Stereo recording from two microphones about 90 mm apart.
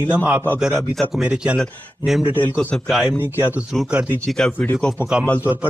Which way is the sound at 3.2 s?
20° right (ahead or behind).